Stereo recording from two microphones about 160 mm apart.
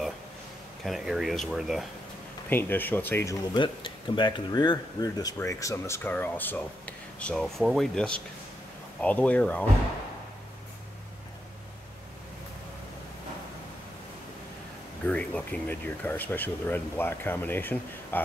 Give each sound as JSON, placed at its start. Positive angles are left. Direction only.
{"t": 0.8, "sound": "speech", "side_deg": 0}
{"t": 2.5, "sound": "speech", "side_deg": 10}
{"t": 3.5, "sound": "speech", "side_deg": 30}
{"t": 15.0, "sound": "speech", "side_deg": 10}